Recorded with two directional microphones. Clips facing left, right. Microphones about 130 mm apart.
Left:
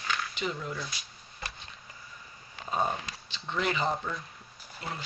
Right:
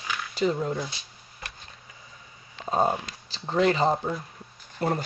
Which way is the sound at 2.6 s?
35° right (ahead or behind).